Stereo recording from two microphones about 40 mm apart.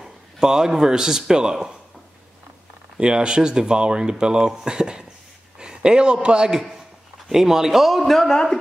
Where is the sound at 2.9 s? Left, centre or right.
Right.